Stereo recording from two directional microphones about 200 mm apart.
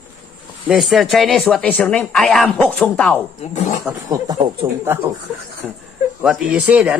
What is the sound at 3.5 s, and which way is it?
Speech, 35° left (ahead or behind).